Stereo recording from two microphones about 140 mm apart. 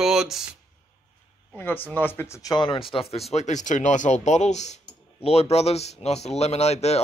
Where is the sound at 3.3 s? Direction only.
60° left (ahead or behind).